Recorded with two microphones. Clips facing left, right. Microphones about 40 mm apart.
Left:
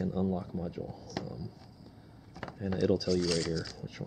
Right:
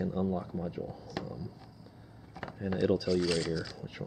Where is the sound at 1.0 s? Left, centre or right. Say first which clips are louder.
Even; right.